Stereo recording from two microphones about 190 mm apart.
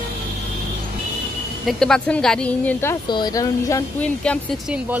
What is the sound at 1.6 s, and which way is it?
Speech, 5° left (ahead or behind).